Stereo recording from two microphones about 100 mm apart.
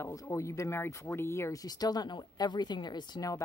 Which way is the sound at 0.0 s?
30° left (ahead or behind).